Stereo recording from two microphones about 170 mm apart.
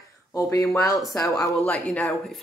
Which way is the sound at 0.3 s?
15° left (ahead or behind).